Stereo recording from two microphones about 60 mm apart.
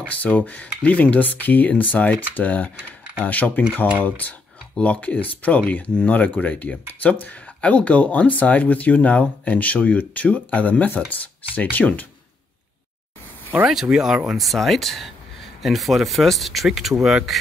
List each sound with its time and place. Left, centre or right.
0.1 s speech: left
13.7 s speech: centre